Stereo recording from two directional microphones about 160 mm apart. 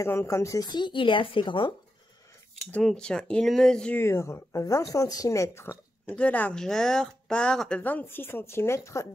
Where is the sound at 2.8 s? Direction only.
5° left (ahead or behind).